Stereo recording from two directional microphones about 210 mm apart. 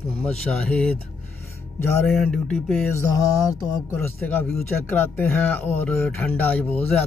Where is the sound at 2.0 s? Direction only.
Centre (ahead or behind).